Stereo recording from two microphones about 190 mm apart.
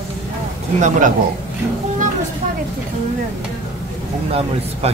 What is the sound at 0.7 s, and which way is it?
Speech, 40° right (ahead or behind).